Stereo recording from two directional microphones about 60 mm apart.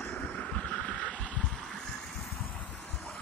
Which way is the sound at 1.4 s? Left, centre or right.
Centre.